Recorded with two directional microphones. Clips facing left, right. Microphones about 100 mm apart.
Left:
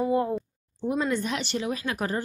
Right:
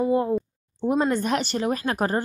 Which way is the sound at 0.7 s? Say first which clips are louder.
Right 4 dB; 45° right (ahead or behind).